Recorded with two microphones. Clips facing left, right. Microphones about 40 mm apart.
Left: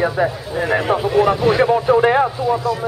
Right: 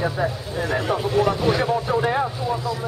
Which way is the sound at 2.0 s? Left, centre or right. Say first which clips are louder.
Left 7 dB; left.